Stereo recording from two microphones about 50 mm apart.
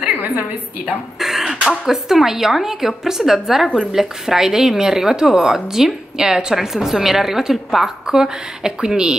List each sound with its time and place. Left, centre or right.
1.2 s throat clearing: centre
1.9 s a woman's voice: centre